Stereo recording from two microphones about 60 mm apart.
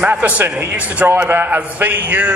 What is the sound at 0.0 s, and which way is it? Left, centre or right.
A man's voice, right.